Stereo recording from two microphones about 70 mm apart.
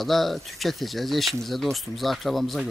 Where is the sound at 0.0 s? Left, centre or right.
Centre.